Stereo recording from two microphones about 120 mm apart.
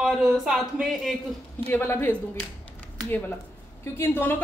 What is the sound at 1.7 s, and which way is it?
A woman's voice, 20° left (ahead or behind).